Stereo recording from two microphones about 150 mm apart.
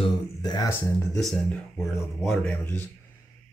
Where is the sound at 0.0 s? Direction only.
30° left (ahead or behind).